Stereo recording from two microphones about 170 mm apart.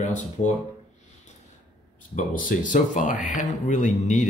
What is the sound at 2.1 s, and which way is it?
Speech, 50° left (ahead or behind).